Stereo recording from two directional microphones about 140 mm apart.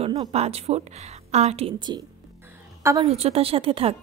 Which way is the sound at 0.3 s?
45° right (ahead or behind).